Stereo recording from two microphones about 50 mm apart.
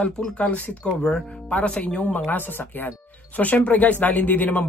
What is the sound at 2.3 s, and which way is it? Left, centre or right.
Speech, left.